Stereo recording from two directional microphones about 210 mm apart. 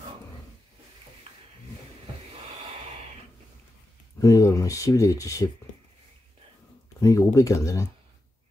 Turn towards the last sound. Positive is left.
turn(degrees=15)  # may be behind; listen again after turning